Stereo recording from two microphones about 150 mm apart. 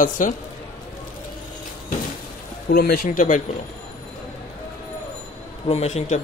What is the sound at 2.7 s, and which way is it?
Speech, 90° left.